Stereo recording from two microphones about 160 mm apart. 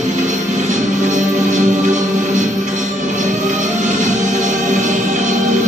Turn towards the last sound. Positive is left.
turn(degrees=-50)  # may be behind; listen again after turning